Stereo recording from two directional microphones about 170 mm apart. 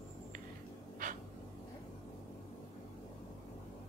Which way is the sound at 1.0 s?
50° right (ahead or behind).